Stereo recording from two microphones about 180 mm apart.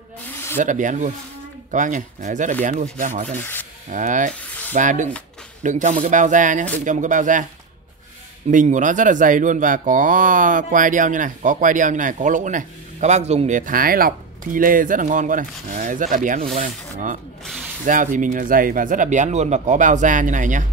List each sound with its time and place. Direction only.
0.3 s snake: 15° left (ahead or behind)
0.6 s speech: 45° right (ahead or behind)
3.3 s rub: 10° left (ahead or behind)
3.9 s speech: 45° right (ahead or behind)
8.5 s speech: 45° right (ahead or behind)
17.8 s speech: 45° right (ahead or behind)